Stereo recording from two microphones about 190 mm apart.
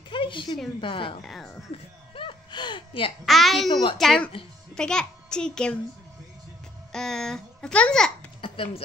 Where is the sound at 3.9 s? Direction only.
Centre (ahead or behind).